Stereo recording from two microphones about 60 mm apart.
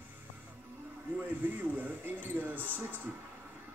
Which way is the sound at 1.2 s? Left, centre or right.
Right.